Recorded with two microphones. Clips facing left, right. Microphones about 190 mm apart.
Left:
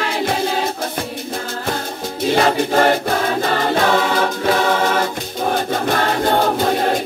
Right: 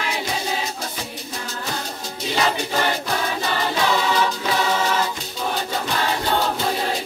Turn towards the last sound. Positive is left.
turn(degrees=50)  # may be behind; listen again after turning